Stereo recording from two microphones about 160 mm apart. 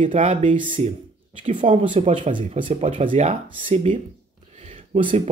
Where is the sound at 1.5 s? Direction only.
35° right (ahead or behind).